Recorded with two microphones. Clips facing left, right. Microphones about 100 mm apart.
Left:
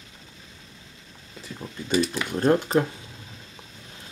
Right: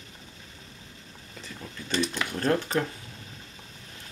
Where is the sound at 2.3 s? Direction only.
20° left (ahead or behind).